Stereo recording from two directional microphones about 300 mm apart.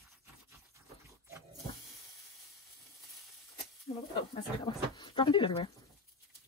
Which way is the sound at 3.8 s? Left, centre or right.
Centre.